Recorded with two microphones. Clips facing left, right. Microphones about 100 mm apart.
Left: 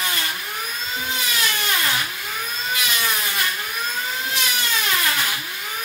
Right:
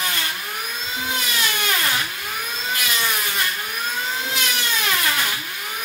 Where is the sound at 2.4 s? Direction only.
20° right (ahead or behind).